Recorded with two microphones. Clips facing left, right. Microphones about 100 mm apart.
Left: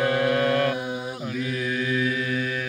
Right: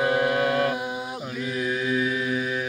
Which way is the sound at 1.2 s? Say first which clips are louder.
Even; 10° right (ahead or behind).